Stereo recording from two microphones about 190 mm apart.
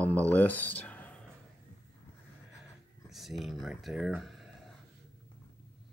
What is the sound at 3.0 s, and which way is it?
Speech, centre (ahead or behind).